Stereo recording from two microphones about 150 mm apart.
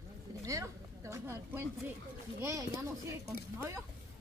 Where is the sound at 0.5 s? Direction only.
20° right (ahead or behind).